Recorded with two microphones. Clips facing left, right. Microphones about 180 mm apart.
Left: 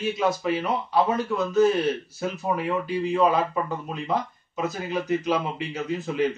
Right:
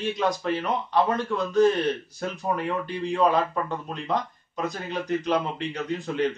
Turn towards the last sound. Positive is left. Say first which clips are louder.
# left 1 dB
turn(degrees=5)  # may be behind; listen again after turning